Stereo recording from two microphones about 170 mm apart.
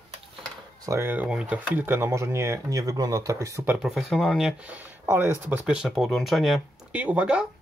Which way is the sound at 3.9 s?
Centre (ahead or behind).